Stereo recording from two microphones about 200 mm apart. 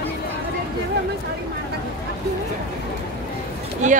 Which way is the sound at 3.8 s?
35° right (ahead or behind).